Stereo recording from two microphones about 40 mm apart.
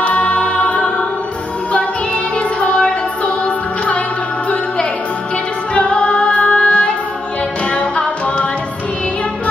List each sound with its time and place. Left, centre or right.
0.0 s choir: left
2.3 s music: left
5.8 s music: left